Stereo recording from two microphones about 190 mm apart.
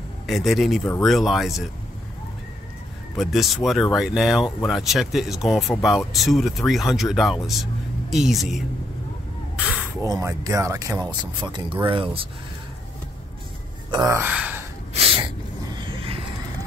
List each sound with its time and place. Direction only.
0.3 s speech: centre (ahead or behind)
3.2 s speech: centre (ahead or behind)
10.0 s speech: 20° right (ahead or behind)
13.8 s speech: 20° right (ahead or behind)
15.0 s snort: 30° right (ahead or behind)
15.6 s a sound: 25° right (ahead or behind)